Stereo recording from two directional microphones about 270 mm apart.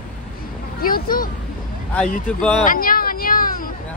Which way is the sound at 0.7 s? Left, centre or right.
Left.